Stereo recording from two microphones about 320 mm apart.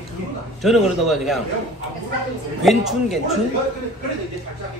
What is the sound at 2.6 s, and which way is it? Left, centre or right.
Speech, centre.